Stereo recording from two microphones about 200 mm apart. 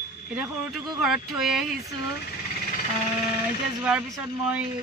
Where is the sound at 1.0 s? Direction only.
Centre (ahead or behind).